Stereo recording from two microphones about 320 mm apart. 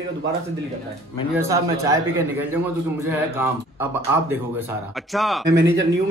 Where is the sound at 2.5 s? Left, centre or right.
Centre.